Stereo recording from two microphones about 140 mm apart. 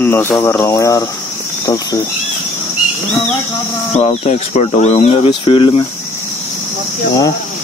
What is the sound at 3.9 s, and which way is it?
Speech, 50° left (ahead or behind).